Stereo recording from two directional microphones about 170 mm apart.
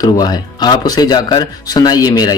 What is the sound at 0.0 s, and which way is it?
Speech, 25° left (ahead or behind).